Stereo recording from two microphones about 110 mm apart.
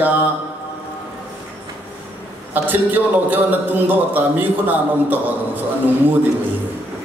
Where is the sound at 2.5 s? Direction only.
15° right (ahead or behind).